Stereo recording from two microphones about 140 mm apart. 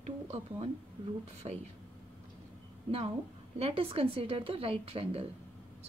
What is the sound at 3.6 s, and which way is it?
A woman's voice, 40° right (ahead or behind).